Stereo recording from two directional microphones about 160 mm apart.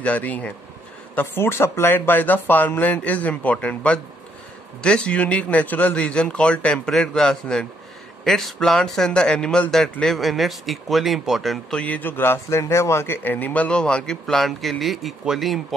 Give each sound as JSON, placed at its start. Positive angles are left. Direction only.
{"t": 0.0, "sound": "speech", "side_deg": 10}